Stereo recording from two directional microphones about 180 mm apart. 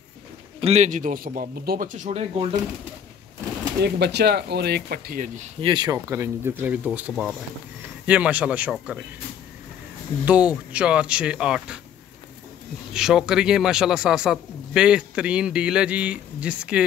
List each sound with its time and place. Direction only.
0.6 s a man's voice: 35° right (ahead or behind)
3.8 s speech: 65° right (ahead or behind); by 5.4 s 50° right (ahead or behind)
5.6 s speech: 25° right (ahead or behind); by 9.0 s 5° right (ahead or behind)
10.2 s a man's voice: 5° right (ahead or behind)
12.9 s a man's voice: 5° right (ahead or behind)